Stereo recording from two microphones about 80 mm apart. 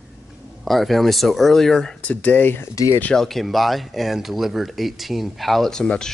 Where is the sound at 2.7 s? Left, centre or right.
Left.